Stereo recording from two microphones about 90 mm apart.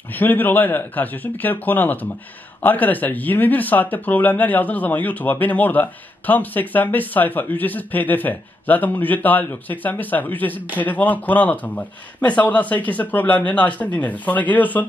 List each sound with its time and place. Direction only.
0.1 s speech: 20° left (ahead or behind)